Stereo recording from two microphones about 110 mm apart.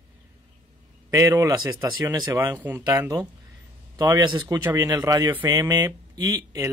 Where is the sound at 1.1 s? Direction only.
30° right (ahead or behind).